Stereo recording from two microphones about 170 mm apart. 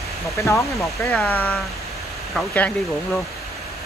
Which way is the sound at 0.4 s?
15° left (ahead or behind).